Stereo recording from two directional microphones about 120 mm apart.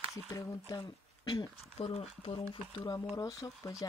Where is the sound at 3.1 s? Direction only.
25° left (ahead or behind).